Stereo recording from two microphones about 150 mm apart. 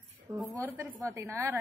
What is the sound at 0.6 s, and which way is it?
Speech, 20° right (ahead or behind).